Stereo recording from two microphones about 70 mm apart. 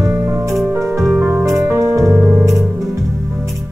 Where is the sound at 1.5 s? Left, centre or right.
Right.